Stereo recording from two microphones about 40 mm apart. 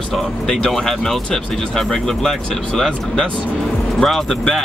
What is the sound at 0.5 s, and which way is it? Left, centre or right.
Speech, centre.